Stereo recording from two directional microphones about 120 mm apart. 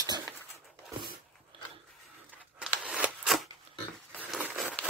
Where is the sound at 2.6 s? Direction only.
10° right (ahead or behind).